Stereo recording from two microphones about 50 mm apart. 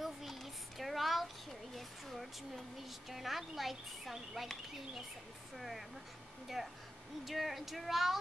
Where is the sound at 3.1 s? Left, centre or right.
Centre.